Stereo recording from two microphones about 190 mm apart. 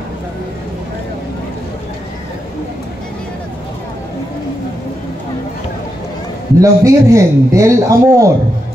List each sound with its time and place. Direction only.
6.6 s speech: 15° right (ahead or behind)